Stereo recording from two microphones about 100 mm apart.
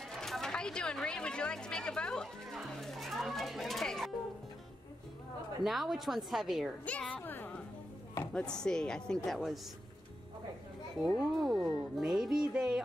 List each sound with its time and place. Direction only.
0.2 s speech: 5° left (ahead or behind)
5.6 s speech: centre (ahead or behind)
6.9 s chopping: 10° left (ahead or behind)
7.2 s a sound: 15° left (ahead or behind)
8.2 s chopping: 10° left (ahead or behind)
11.1 s speech: centre (ahead or behind)